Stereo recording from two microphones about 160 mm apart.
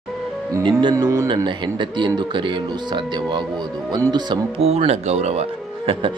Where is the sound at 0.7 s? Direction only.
30° right (ahead or behind).